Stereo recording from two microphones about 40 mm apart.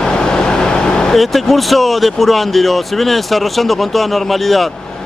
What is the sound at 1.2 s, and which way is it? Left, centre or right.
Speech, centre.